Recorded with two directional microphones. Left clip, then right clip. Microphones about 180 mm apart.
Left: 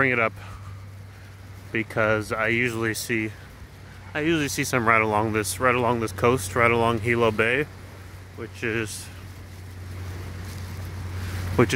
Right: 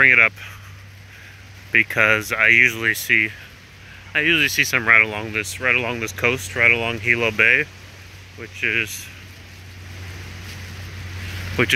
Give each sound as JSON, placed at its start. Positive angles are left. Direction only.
{"t": 0.0, "sound": "speech", "side_deg": 15}
{"t": 1.7, "sound": "speech", "side_deg": 10}
{"t": 11.6, "sound": "speech", "side_deg": 20}